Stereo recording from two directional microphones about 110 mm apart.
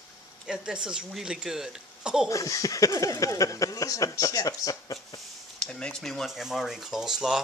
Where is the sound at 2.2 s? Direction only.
30° left (ahead or behind).